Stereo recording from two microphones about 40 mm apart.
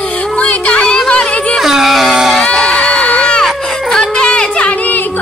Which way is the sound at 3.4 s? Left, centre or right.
Centre.